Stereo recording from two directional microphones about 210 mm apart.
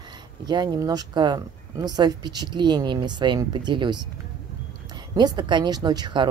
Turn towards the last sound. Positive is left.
turn(degrees=-20)  # may be behind; listen again after turning